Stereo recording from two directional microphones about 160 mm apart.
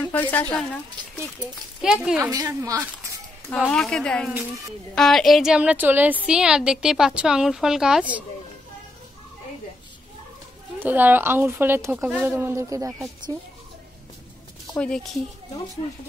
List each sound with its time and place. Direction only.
0.0 s a woman's voice: 10° left (ahead or behind)
1.8 s a woman's voice: 5° right (ahead or behind)
2.3 s a woman's voice: 20° right (ahead or behind)
3.4 s a woman's voice: 5° left (ahead or behind)
4.3 s speech: 10° right (ahead or behind)
4.9 s a woman's voice: centre (ahead or behind)
10.8 s speech: 10° right (ahead or behind)